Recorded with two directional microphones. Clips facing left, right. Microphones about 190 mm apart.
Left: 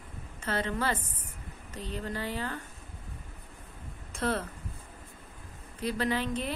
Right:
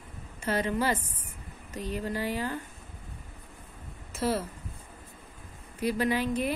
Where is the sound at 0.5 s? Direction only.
10° right (ahead or behind).